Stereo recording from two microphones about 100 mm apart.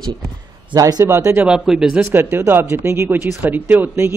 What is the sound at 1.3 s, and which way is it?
Speech, 10° right (ahead or behind).